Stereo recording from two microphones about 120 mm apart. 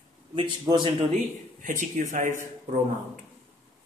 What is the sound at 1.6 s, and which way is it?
Speech, 90° right.